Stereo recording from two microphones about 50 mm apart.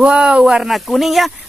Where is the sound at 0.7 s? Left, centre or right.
Centre.